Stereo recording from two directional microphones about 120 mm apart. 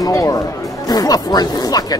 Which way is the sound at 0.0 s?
30° left (ahead or behind).